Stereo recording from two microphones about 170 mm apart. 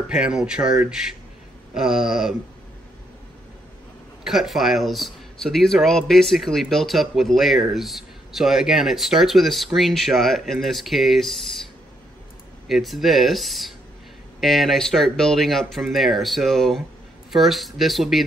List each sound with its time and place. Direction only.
0.1 s speech: 5° right (ahead or behind)
4.2 s speech: centre (ahead or behind)
12.6 s speech: centre (ahead or behind)